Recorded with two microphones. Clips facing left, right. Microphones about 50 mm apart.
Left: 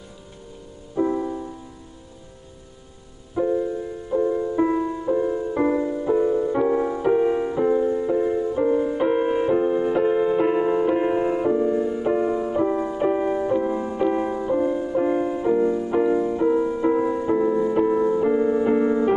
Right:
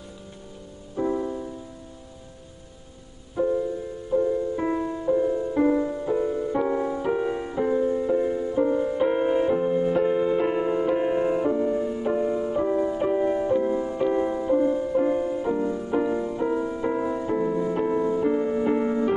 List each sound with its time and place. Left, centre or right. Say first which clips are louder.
0.9 s music: left 3 dB; centre
3.4 s music: left 1 dB; centre
4.1 s music: left 1 dB; left
4.6 s music: left 5 dB; centre